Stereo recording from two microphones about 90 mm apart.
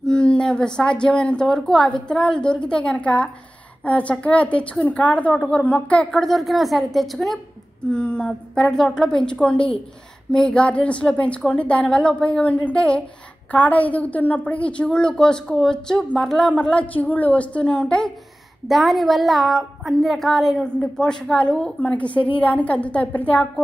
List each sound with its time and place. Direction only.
0.0 s a woman's voice: 10° left (ahead or behind)
6.2 s a woman's voice: centre (ahead or behind)
7.9 s a woman's voice: 10° left (ahead or behind)